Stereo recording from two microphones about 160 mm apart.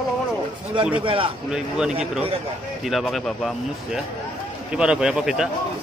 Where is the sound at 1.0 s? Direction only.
35° right (ahead or behind).